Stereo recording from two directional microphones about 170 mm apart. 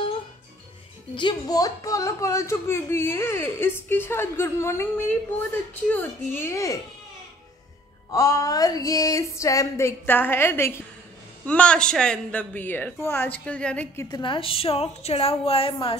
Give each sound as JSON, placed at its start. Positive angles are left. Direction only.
{"t": 1.1, "sound": "speech", "side_deg": 25}
{"t": 5.9, "sound": "speech", "side_deg": 10}
{"t": 8.1, "sound": "a sound", "side_deg": 20}
{"t": 11.4, "sound": "speech", "side_deg": 5}
{"t": 14.1, "sound": "a woman's voice", "side_deg": 30}